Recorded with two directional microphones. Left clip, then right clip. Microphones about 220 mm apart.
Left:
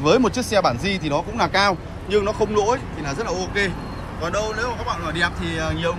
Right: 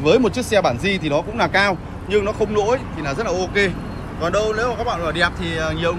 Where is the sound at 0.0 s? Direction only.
45° left (ahead or behind).